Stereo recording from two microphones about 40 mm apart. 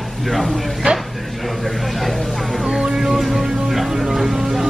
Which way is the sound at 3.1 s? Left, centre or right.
Centre.